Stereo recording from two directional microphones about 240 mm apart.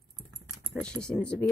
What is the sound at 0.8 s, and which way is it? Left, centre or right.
Speech, centre.